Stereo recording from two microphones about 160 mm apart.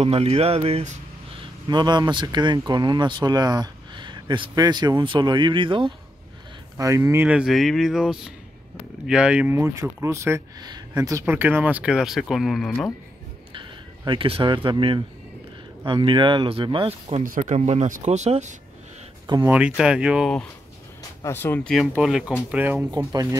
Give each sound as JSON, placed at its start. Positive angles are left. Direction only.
{"t": 0.0, "sound": "speech", "side_deg": -40}
{"t": 1.4, "sound": "speech", "side_deg": -25}
{"t": 6.8, "sound": "speech", "side_deg": -20}
{"t": 13.5, "sound": "speech", "side_deg": -30}
{"t": 17.2, "sound": "speech", "side_deg": -55}
{"t": 19.4, "sound": "speech", "side_deg": -10}
{"t": 21.2, "sound": "speech", "side_deg": 15}
{"t": 21.9, "sound": "speech", "side_deg": -5}
{"t": 22.8, "sound": "speech", "side_deg": -25}